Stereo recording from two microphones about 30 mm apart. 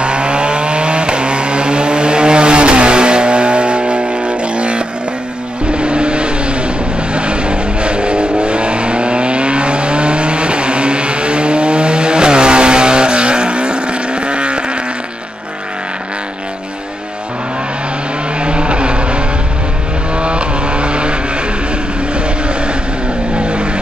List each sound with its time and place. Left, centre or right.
0.0 s vehicle: right
18.4 s vehicle: right